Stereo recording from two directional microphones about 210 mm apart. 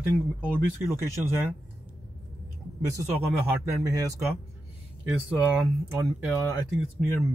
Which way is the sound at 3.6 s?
15° right (ahead or behind).